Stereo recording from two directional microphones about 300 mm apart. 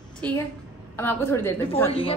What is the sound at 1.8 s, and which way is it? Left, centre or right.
Speech, centre.